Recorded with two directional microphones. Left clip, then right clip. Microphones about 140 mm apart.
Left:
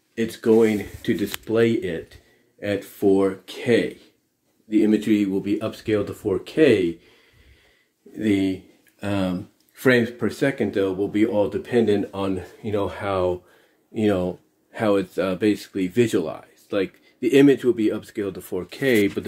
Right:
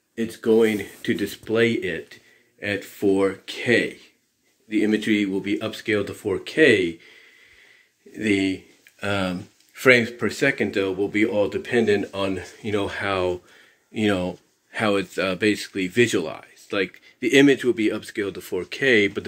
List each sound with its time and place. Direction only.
0.1 s speech: 20° left (ahead or behind); by 7.0 s 5° left (ahead or behind)
8.1 s speech: 5° left (ahead or behind)